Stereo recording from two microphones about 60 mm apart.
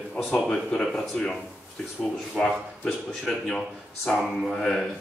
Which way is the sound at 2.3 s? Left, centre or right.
Centre.